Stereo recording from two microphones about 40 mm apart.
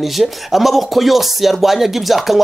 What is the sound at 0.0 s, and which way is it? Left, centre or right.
Speech, centre.